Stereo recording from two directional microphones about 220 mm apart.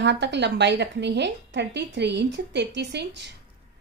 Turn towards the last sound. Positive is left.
turn(degrees=-50)  # may be behind; listen again after turning